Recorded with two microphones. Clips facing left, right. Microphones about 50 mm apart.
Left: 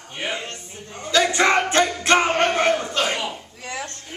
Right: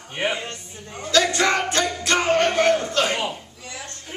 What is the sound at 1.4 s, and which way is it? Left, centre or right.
Music, left.